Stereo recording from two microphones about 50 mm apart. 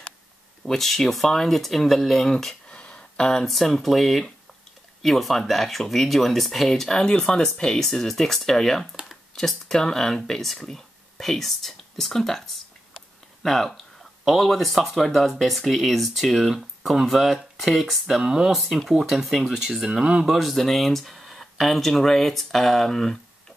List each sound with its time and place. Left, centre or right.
0.7 s speech: centre
2.7 s a sound: left
3.4 s speech: centre
20.2 s speech: centre